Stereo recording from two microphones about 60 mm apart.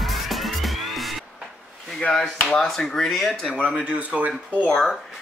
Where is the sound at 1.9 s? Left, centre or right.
Centre.